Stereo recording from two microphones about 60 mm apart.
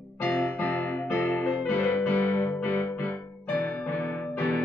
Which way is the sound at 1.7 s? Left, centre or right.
Left.